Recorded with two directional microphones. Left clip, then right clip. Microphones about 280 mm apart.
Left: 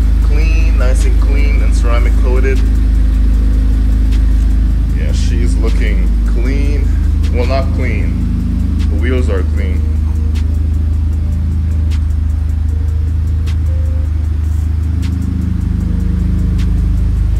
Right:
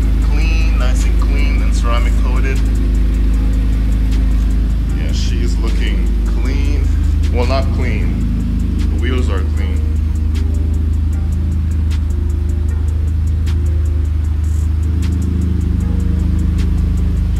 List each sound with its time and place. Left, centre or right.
0.4 s music: centre
5.1 s music: centre
9.0 s music: centre